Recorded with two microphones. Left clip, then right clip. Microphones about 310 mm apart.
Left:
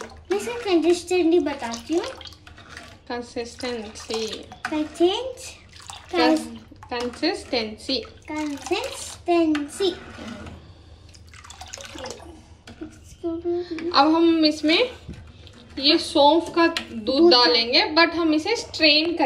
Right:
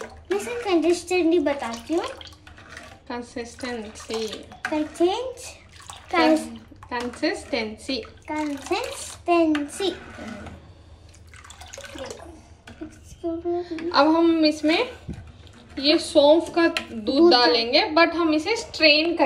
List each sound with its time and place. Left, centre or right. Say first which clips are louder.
0.0 s speech: left 1 dB; centre
11.4 s water: left 1 dB; centre
13.6 s speech: left 1 dB; centre
18.5 s a woman's voice: right 1 dB; centre